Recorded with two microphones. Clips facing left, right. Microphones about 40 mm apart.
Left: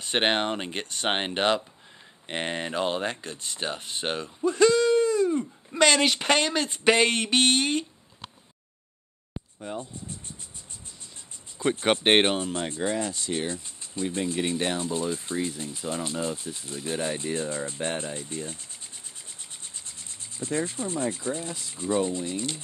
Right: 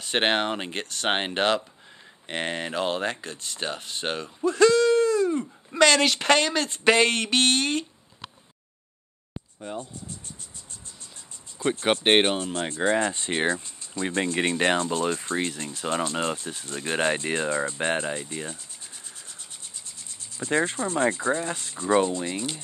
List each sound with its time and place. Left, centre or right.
0.0 s speech: centre
0.8 s speech: centre
9.3 s a sound: centre
11.8 s speech: centre
12.7 s speech: right
14.0 s speech: right
16.4 s speech: right
17.6 s speech: right
20.3 s speech: right